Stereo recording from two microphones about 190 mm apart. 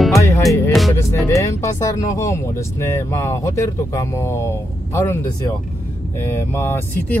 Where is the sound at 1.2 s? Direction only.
15° left (ahead or behind).